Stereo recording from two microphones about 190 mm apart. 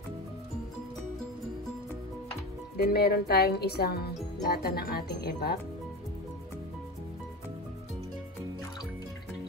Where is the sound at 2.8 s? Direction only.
55° left (ahead or behind).